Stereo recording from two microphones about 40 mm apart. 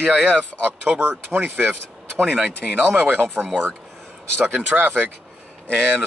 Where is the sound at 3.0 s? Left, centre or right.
Right.